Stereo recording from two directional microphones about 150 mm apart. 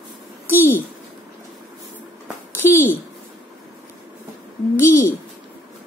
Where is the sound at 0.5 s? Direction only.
15° left (ahead or behind).